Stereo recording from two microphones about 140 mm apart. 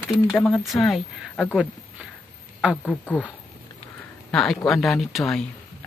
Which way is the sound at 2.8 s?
10° left (ahead or behind).